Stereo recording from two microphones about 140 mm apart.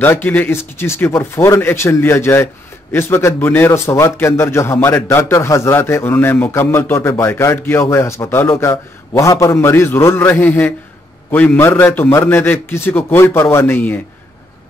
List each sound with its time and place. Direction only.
0.0 s a man's voice: 15° left (ahead or behind)